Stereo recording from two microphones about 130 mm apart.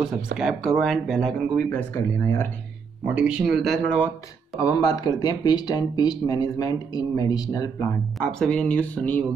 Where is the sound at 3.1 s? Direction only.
10° right (ahead or behind).